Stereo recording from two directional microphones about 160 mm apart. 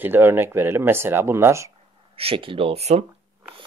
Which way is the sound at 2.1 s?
35° right (ahead or behind).